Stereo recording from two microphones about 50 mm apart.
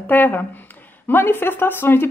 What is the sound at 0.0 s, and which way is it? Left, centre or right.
Speech, left.